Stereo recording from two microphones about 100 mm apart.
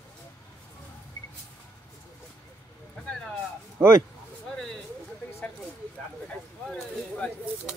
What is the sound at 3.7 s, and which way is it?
Speech, 30° right (ahead or behind).